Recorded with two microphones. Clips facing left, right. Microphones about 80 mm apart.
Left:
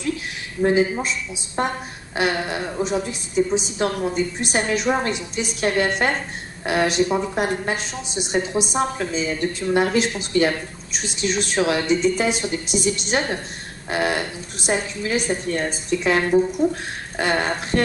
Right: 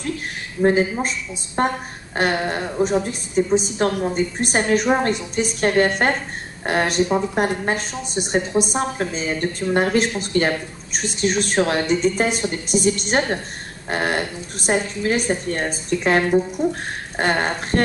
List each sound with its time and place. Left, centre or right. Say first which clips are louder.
0.7 s a woman's voice: right 1 dB; right